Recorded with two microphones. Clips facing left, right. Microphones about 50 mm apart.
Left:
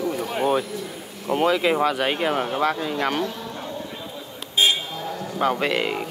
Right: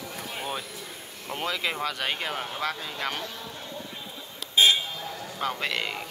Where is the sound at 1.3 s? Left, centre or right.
Centre.